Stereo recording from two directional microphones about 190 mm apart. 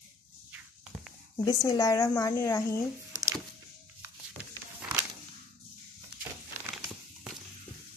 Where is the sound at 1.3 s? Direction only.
20° left (ahead or behind).